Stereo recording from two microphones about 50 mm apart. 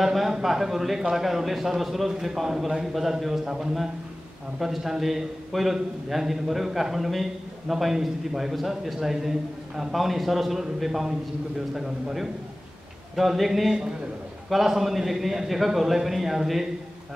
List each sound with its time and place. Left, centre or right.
0.0 s a man's voice: centre